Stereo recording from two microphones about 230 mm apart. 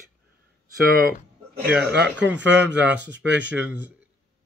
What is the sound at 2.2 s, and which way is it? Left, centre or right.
Speech, right.